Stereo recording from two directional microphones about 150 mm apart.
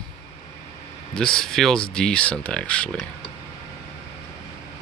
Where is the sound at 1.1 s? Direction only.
5° left (ahead or behind).